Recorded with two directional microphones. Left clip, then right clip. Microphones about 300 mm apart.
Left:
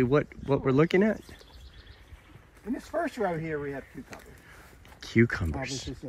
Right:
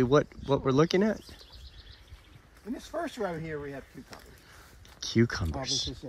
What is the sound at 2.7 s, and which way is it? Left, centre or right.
Speech, centre.